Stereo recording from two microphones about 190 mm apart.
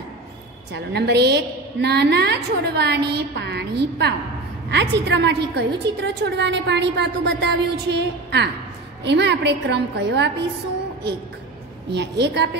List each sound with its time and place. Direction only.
0.7 s a woman's voice: 60° right (ahead or behind)
11.9 s a woman's voice: 65° right (ahead or behind)